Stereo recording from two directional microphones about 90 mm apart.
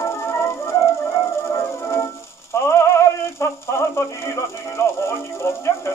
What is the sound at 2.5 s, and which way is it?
Synthetic singing, 30° left (ahead or behind).